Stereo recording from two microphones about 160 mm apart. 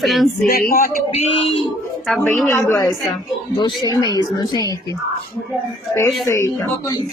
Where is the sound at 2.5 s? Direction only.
20° left (ahead or behind).